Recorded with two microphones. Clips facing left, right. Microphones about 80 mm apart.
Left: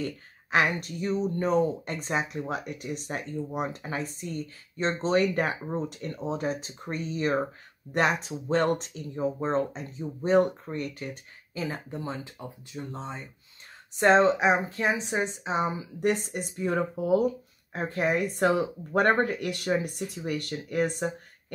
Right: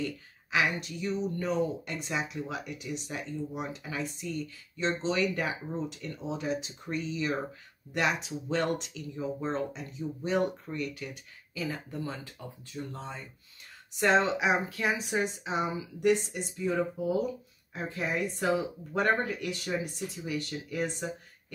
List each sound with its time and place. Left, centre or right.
0.0 s speech: left
13.9 s speech: left